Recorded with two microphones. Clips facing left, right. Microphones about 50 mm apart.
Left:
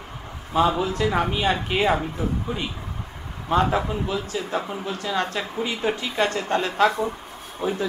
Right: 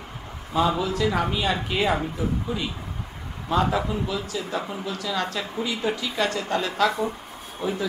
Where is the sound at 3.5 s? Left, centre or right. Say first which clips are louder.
Left 2 dB; left.